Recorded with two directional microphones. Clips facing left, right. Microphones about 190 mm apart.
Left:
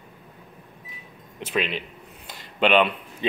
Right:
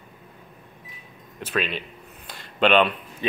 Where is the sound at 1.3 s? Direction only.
15° left (ahead or behind).